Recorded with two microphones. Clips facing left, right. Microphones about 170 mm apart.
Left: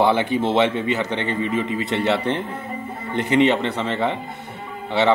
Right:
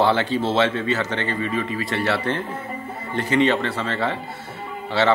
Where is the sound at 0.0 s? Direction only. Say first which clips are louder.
Left 1 dB; 15° left (ahead or behind).